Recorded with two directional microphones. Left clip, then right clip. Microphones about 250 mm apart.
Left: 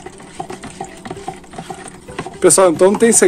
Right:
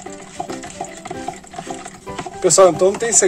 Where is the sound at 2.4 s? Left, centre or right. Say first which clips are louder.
Left 1 dB; left.